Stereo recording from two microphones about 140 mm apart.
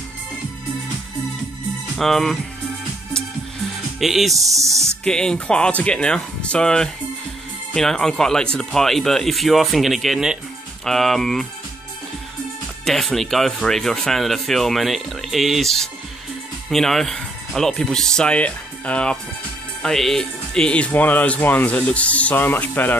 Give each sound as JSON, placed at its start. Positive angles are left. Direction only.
{"t": 2.0, "sound": "speech", "side_deg": 0}
{"t": 4.0, "sound": "speech", "side_deg": 0}
{"t": 4.4, "sound": "speech", "side_deg": -25}
{"t": 5.0, "sound": "speech", "side_deg": 5}
{"t": 12.8, "sound": "speech", "side_deg": 0}